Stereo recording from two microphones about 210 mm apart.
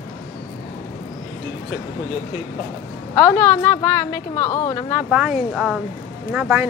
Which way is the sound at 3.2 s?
10° left (ahead or behind).